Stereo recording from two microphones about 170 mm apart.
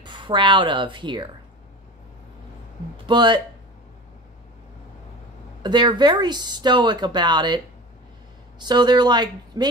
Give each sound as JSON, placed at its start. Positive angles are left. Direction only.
{"t": 0.0, "sound": "a woman's voice", "side_deg": -30}
{"t": 3.1, "sound": "speech", "side_deg": -25}
{"t": 5.6, "sound": "speech", "side_deg": -25}